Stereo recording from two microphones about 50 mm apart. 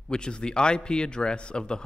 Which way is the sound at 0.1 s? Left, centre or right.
Centre.